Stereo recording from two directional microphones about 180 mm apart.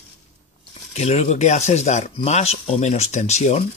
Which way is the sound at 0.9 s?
35° left (ahead or behind).